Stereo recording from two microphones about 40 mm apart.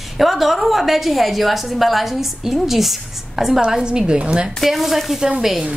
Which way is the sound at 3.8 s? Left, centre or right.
Right.